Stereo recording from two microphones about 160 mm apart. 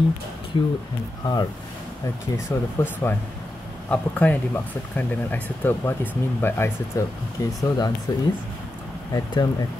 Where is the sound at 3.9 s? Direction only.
10° left (ahead or behind).